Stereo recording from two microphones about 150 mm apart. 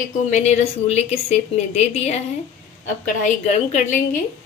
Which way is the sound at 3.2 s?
55° left (ahead or behind).